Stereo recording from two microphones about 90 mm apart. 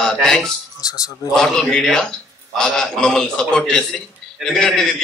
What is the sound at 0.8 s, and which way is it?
Speech, 40° left (ahead or behind).